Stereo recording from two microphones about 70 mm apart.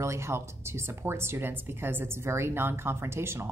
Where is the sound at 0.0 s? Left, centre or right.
Right.